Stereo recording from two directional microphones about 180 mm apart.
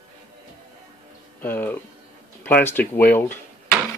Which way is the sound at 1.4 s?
10° left (ahead or behind).